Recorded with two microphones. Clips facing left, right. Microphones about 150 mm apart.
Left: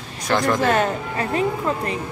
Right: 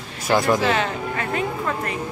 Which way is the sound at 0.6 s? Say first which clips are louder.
Left 2 dB; 50° left (ahead or behind).